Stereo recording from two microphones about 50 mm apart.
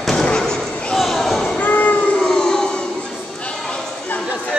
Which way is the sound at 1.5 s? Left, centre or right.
Left.